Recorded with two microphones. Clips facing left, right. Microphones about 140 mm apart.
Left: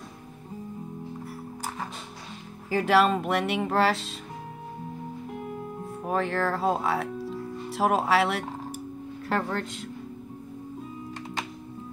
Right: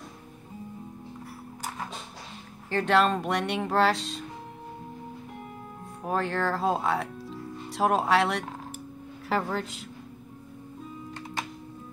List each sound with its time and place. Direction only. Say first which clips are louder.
2.7 s speech: left 2 dB; 5° left (ahead or behind)
6.0 s speech: left 1 dB; centre (ahead or behind)